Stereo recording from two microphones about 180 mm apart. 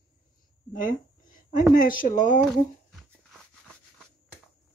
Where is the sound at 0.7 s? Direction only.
50° left (ahead or behind).